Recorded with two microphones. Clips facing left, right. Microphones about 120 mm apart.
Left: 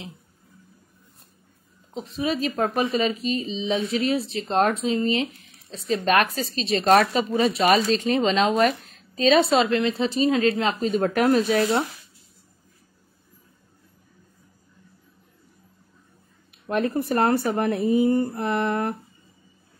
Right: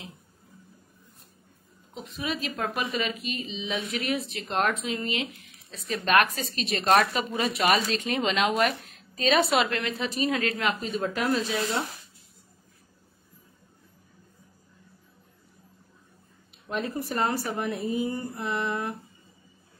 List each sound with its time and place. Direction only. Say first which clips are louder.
2.0 s a woman's voice: left 7 dB; 35° left (ahead or behind)
11.0 s speech: left 9 dB; 50° left (ahead or behind)
16.6 s speech: left 7 dB; 65° left (ahead or behind)